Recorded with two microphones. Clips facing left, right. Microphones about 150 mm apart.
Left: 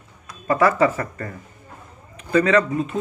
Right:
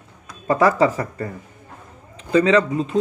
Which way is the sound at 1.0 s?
15° right (ahead or behind).